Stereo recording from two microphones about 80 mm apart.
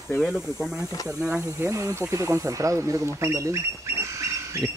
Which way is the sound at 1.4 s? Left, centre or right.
Right.